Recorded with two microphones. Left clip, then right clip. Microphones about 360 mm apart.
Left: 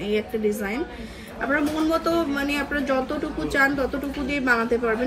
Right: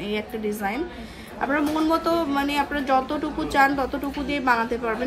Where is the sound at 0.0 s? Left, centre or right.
Right.